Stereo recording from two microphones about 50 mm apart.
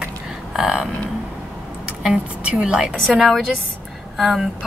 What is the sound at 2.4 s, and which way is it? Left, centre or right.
Speech, right.